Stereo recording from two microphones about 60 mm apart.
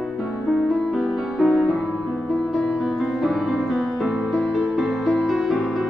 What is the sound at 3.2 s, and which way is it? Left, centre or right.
Music, centre.